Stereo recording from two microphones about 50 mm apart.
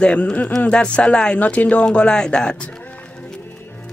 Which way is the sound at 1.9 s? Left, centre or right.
Centre.